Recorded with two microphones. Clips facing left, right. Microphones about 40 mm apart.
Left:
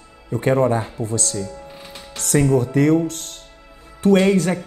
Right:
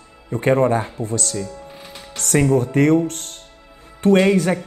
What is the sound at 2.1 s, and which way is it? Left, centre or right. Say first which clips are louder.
Music: even; right.